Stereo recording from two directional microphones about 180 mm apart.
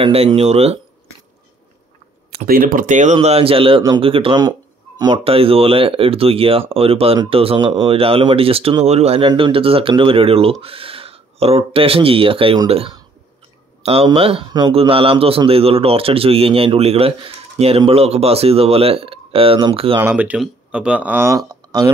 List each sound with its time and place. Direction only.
0.0 s a man's voice: 30° right (ahead or behind)
2.3 s a man's voice: 55° right (ahead or behind); by 20.0 s 30° right (ahead or behind)
20.0 s speech: 10° right (ahead or behind)